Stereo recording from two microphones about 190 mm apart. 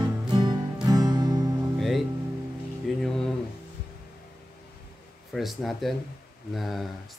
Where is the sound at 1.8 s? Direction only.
Centre (ahead or behind).